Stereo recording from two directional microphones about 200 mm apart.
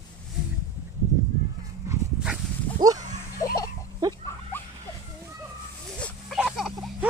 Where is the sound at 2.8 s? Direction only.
20° right (ahead or behind).